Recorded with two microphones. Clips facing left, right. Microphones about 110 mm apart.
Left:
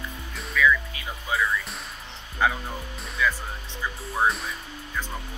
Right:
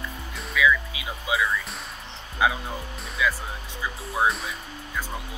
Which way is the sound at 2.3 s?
10° right (ahead or behind).